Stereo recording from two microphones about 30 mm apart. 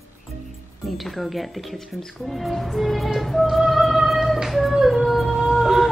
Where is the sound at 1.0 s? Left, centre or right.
Centre.